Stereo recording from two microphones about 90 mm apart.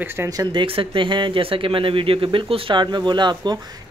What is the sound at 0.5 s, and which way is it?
Speech, 75° right (ahead or behind).